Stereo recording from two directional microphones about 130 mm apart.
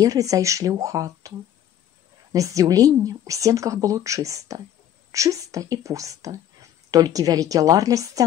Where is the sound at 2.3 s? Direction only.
25° right (ahead or behind).